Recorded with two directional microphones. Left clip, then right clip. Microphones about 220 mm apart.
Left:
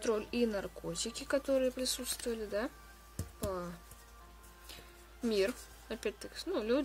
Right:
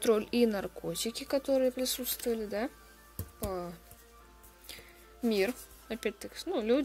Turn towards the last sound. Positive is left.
turn(degrees=-15)  # may be behind; listen again after turning